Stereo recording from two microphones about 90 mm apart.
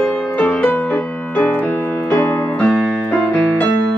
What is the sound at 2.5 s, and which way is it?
Music, 15° left (ahead or behind).